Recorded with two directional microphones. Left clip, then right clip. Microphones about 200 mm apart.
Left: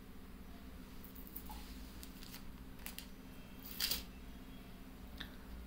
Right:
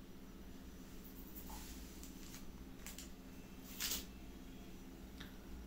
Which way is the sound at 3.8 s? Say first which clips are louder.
Left 4 dB; 55° left (ahead or behind).